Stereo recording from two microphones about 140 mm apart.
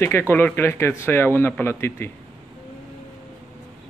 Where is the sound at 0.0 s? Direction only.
15° left (ahead or behind).